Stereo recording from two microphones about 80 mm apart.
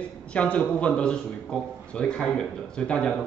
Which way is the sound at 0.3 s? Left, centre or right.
Centre.